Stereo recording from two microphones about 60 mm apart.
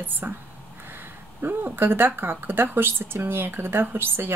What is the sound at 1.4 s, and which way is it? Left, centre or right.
Speech, right.